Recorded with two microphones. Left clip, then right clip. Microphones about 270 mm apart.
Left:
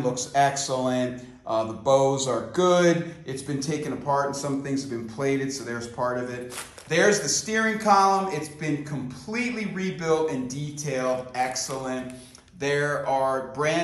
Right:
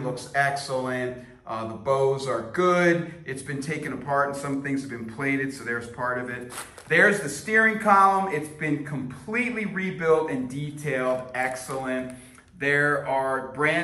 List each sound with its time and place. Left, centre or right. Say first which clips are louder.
0.1 s speech: even; centre